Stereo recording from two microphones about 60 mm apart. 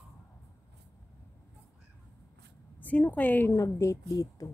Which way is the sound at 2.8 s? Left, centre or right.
Left.